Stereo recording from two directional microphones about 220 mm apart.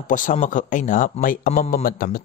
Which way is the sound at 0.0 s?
35° left (ahead or behind).